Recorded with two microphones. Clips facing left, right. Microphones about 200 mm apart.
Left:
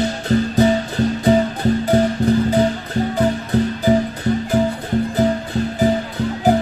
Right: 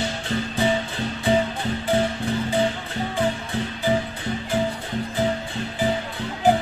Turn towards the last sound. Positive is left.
turn(degrees=40)  # may be behind; listen again after turning